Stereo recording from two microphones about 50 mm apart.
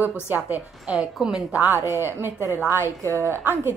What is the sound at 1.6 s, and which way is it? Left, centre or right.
A woman's voice, right.